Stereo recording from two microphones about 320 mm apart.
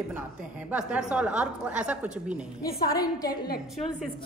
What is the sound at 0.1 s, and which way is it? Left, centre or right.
A woman's voice, centre.